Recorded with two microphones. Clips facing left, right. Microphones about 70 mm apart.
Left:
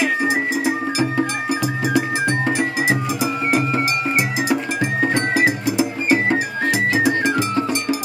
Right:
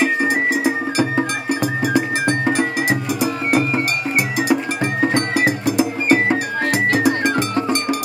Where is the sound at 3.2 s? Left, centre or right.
Right.